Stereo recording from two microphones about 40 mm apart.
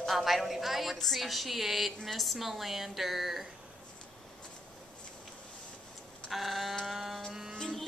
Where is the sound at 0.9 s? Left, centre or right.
Centre.